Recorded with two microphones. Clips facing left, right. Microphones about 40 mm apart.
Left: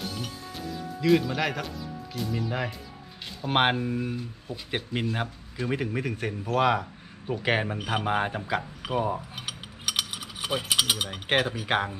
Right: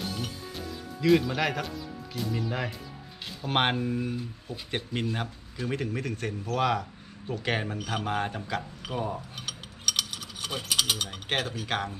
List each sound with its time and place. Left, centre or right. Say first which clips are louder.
0.0 s music: even; centre
3.4 s a man's voice: left 2 dB; centre